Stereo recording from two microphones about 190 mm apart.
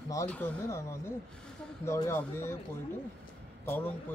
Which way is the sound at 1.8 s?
15° left (ahead or behind).